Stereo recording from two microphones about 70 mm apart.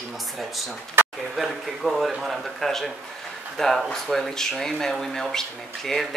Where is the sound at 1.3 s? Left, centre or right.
Centre.